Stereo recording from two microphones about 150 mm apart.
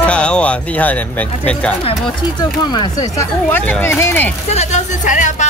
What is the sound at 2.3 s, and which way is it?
Speech, 30° left (ahead or behind).